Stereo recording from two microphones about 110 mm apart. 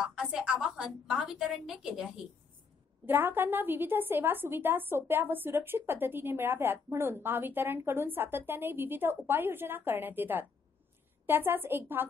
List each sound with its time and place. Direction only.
0.0 s a woman's voice: 5° right (ahead or behind)
3.1 s a woman's voice: 20° right (ahead or behind)